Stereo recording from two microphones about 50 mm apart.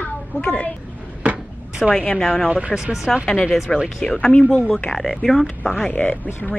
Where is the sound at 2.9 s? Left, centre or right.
Centre.